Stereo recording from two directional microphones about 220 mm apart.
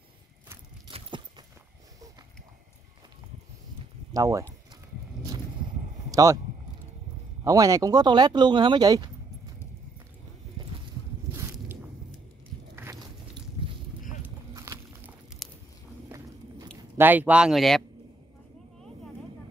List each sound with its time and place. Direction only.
0.5 s horse: 20° right (ahead or behind)
4.1 s speech: 15° right (ahead or behind)
6.0 s speech: 15° right (ahead or behind)
7.4 s speech: 15° right (ahead or behind)
12.7 s biting: 10° right (ahead or behind)
13.6 s a sound: 25° right (ahead or behind)
14.2 s walk: 15° right (ahead or behind)
15.4 s a sound: centre (ahead or behind)
16.1 s walk: 15° right (ahead or behind)
17.0 s speech: 10° right (ahead or behind)